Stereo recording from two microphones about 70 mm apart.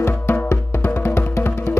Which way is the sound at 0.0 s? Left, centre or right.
Left.